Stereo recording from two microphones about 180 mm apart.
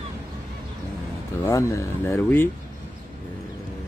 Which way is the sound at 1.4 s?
15° left (ahead or behind).